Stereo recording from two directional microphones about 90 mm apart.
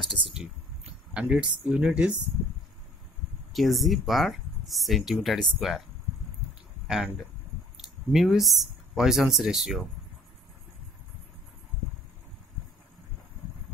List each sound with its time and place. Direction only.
0.0 s speech: 75° right (ahead or behind)
1.1 s speech: 10° right (ahead or behind)
3.5 s speech: centre (ahead or behind)
7.7 s speech: 5° right (ahead or behind)